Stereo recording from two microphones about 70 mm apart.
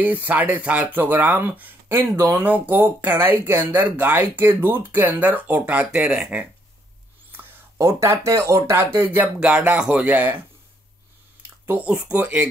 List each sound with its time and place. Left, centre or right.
0.0 s speech: right
5.9 s speech: centre
7.3 s a sound: right
7.8 s speech: right
9.4 s speech: centre
11.8 s speech: centre